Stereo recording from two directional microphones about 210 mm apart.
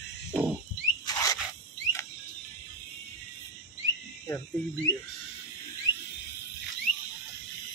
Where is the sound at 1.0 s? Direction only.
15° left (ahead or behind).